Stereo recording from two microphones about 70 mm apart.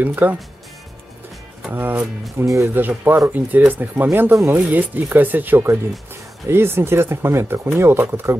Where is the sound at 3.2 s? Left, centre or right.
Right.